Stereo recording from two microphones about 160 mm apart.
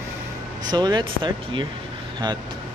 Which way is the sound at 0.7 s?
25° right (ahead or behind).